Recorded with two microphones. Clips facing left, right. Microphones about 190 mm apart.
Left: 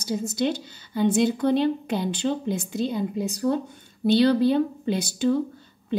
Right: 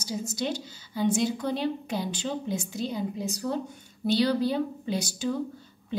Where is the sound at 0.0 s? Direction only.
60° left (ahead or behind).